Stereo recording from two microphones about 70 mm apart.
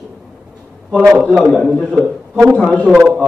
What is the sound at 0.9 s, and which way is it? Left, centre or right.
Speech, centre.